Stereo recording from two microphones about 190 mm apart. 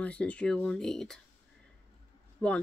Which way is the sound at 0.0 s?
5° left (ahead or behind).